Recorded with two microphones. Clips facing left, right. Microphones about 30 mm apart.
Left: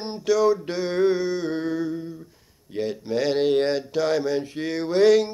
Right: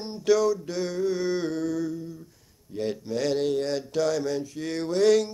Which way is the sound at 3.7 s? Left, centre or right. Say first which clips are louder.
Left 3 dB; left.